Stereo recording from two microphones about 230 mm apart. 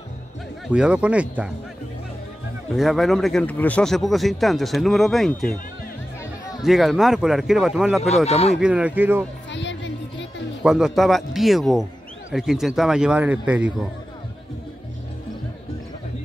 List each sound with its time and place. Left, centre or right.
0.7 s speech: centre
2.7 s speech: centre
6.6 s speech: centre
8.3 s speech: left
8.5 s speech: centre
9.5 s music: left
10.6 s speech: centre